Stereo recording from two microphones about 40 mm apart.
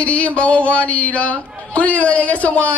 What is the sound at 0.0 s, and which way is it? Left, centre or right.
Speech, left.